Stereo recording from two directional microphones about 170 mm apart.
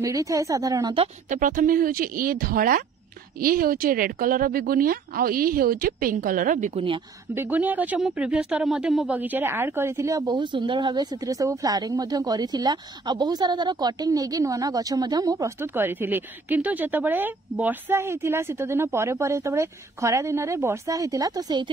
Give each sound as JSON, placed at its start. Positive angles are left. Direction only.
{"t": 0.0, "sound": "speech", "side_deg": -20}
{"t": 1.3, "sound": "speech", "side_deg": -50}
{"t": 6.7, "sound": "speech", "side_deg": -30}
{"t": 7.3, "sound": "speech", "side_deg": -10}